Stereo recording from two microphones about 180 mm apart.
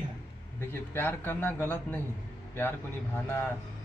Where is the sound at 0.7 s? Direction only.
15° left (ahead or behind).